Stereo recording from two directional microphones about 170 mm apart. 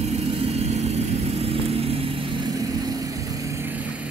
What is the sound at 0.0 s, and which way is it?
Vehicle, 40° right (ahead or behind).